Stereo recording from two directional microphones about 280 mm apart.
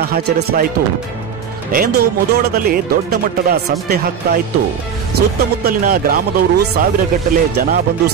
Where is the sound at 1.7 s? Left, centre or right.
Right.